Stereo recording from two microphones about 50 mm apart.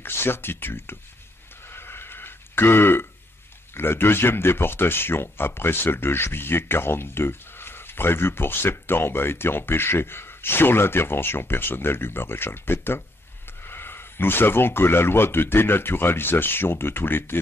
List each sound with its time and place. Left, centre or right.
0.0 s speech: left
1.7 s a sound: left
3.7 s speech: left